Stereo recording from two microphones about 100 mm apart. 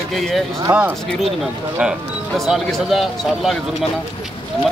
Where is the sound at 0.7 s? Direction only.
20° right (ahead or behind).